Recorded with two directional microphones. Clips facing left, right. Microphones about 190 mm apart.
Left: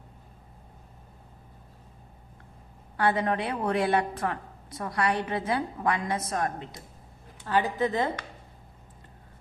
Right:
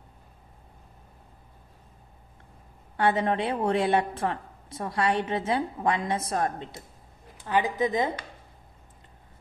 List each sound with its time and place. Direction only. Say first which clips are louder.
3.0 s a woman's voice: right 1 dB; 25° right (ahead or behind)
7.4 s a woman's voice: right 1 dB; 15° right (ahead or behind)